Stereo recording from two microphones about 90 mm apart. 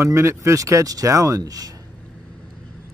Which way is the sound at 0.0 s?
30° right (ahead or behind).